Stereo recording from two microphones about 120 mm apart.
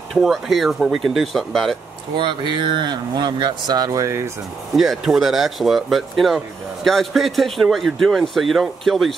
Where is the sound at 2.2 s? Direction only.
40° right (ahead or behind); by 4.3 s 25° right (ahead or behind).